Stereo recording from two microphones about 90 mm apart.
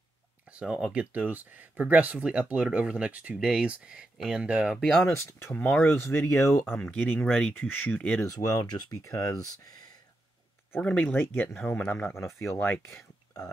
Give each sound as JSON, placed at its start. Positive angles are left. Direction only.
{"t": 0.5, "sound": "speech", "side_deg": -10}
{"t": 5.5, "sound": "speech", "side_deg": 15}
{"t": 8.3, "sound": "speech", "side_deg": 45}
{"t": 10.8, "sound": "speech", "side_deg": 15}